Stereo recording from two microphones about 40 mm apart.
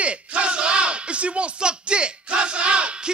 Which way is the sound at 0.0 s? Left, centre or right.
Right.